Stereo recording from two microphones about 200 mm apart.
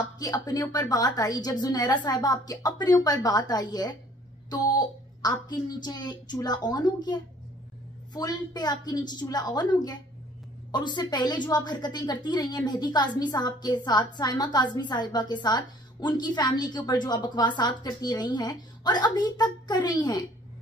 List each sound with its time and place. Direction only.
0.2 s a woman's voice: 20° left (ahead or behind)